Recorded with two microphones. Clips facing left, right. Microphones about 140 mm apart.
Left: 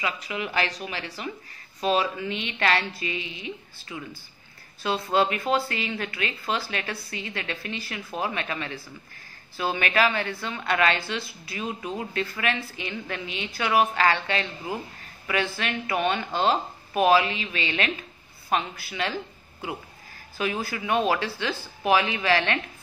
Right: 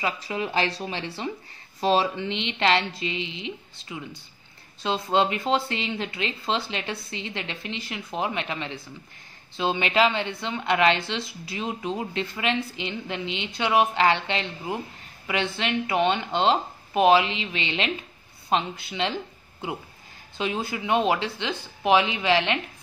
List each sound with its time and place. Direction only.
0.0 s speech: 30° right (ahead or behind)
20.3 s speech: 20° right (ahead or behind)